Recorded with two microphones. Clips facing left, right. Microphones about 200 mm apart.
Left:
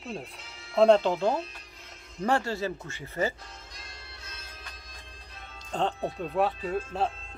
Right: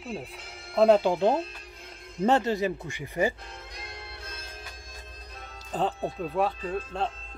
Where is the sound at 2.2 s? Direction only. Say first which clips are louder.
Right 4 dB; 20° right (ahead or behind).